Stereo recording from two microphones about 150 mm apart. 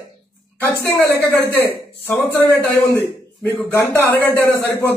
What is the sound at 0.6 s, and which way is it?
A man's voice, 15° left (ahead or behind).